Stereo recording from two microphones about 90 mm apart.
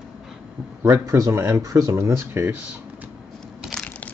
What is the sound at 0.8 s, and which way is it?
Speech, 35° right (ahead or behind).